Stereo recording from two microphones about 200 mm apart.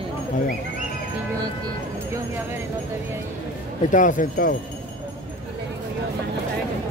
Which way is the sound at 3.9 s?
40° left (ahead or behind).